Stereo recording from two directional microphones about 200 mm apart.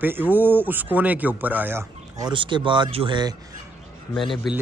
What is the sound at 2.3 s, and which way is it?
Speech, 25° right (ahead or behind).